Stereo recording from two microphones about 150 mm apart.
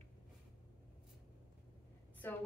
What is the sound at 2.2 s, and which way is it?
Speech, 15° left (ahead or behind).